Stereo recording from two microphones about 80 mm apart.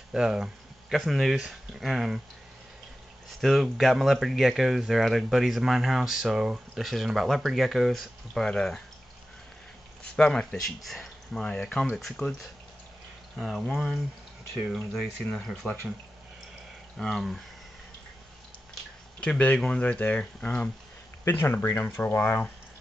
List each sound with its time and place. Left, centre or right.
0.1 s speech: centre
3.3 s speech: centre
10.1 s speech: centre
13.4 s speech: centre
17.0 s speech: centre
19.1 s speech: centre
21.2 s speech: left